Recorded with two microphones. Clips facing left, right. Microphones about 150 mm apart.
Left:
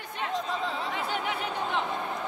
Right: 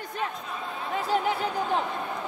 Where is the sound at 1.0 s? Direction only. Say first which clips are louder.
Right 10 dB; 35° right (ahead or behind).